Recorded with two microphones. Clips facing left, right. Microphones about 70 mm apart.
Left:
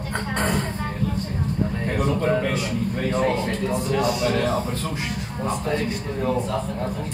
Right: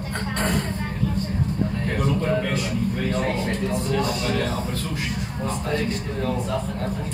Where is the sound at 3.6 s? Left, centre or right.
Centre.